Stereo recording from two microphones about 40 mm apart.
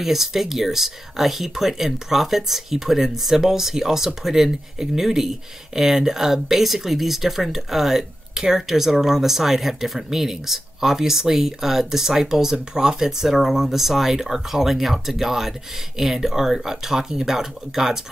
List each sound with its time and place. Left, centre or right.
0.0 s speech: centre